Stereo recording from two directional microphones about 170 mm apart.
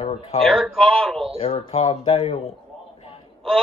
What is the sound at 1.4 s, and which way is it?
Speech, 30° left (ahead or behind).